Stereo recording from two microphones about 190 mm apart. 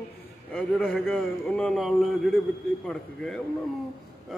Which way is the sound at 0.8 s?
10° left (ahead or behind).